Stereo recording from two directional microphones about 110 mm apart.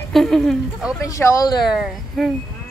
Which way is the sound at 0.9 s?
25° left (ahead or behind).